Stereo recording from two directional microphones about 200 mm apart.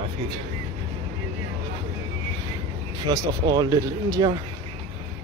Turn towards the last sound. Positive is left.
turn(degrees=-20)  # may be behind; listen again after turning